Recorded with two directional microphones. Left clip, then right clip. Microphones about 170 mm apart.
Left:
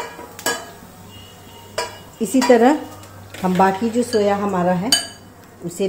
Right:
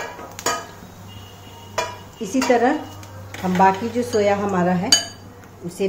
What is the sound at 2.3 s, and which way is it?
Speech, 50° left (ahead or behind).